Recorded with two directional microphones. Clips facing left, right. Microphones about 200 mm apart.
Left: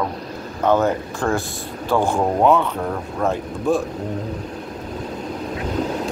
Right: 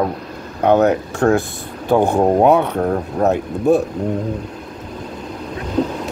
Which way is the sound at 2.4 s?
65° right (ahead or behind).